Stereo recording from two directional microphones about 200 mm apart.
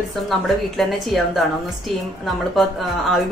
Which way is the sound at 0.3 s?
Centre (ahead or behind).